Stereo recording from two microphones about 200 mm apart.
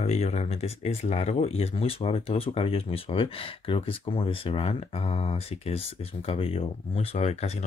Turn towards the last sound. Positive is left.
turn(degrees=30)  # may be behind; listen again after turning